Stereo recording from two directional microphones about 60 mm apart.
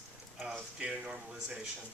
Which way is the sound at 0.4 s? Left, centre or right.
Centre.